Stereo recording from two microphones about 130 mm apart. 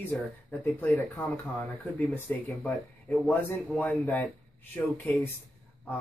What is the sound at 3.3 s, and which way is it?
Speech, 10° left (ahead or behind).